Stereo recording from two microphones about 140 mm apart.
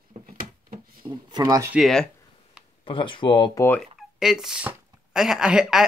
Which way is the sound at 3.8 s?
5° right (ahead or behind).